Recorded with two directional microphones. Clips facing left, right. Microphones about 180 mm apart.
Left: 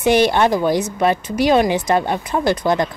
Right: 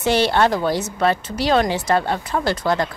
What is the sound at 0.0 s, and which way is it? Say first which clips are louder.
A woman's voice: left 3 dB; 15° left (ahead or behind).